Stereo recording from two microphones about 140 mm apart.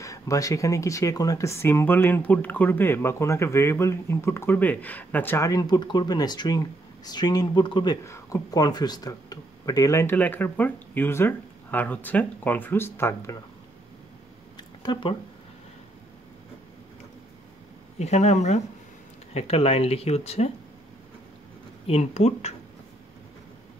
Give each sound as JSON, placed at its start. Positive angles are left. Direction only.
{"t": 0.0, "sound": "speech", "side_deg": 25}
{"t": 14.6, "sound": "a sound", "side_deg": 30}
{"t": 17.9, "sound": "speech", "side_deg": 55}
{"t": 21.8, "sound": "speech", "side_deg": 50}